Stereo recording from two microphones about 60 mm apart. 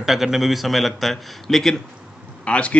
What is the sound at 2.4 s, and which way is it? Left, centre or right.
Speech, left.